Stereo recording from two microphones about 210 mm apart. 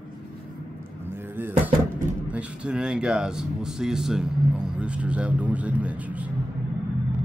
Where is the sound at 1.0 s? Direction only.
10° right (ahead or behind).